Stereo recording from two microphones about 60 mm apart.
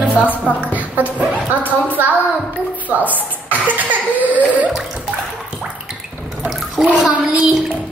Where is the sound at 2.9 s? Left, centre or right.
Right.